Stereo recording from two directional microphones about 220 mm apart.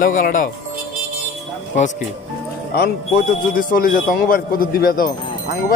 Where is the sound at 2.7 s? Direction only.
40° left (ahead or behind).